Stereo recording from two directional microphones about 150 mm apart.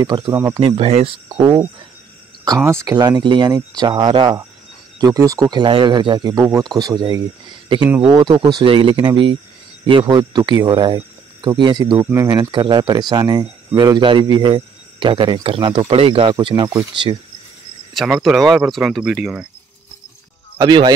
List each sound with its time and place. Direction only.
0.0 s speech: 30° right (ahead or behind)
0.3 s speech: 15° right (ahead or behind)
0.6 s speech: 40° right (ahead or behind)
2.4 s speech: 20° right (ahead or behind)
17.9 s speech: 5° right (ahead or behind)
20.5 s speech: 30° right (ahead or behind)